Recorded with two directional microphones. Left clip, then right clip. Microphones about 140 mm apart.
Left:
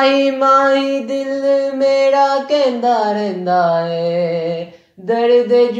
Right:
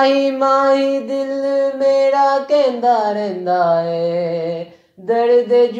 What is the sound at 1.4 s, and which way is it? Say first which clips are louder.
Mantra: left 2 dB; 50° right (ahead or behind).